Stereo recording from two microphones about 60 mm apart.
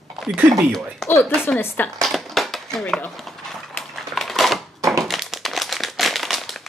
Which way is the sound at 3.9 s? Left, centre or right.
Centre.